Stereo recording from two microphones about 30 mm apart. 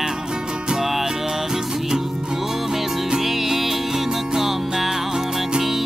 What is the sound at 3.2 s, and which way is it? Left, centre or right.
Music, centre.